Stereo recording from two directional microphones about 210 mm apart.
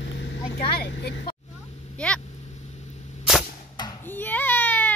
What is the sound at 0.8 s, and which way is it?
Speech, 50° left (ahead or behind).